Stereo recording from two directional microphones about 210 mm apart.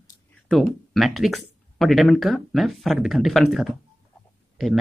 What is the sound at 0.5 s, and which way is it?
Speech, centre (ahead or behind).